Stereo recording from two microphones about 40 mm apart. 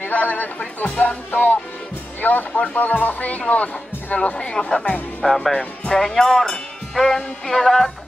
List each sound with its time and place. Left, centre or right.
0.0 s speech: left
2.2 s speech: left
4.6 s speech: centre
5.2 s music: centre
5.9 s speech: centre
7.4 s music: centre